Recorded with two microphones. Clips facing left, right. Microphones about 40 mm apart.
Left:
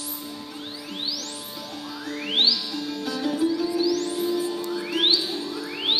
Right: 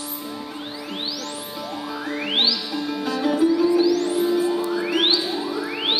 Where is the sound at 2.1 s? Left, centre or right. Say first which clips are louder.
Right 1 dB; centre.